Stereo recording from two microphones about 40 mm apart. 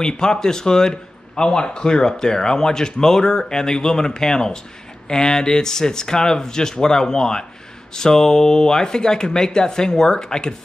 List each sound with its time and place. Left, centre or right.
0.0 s a man's voice: centre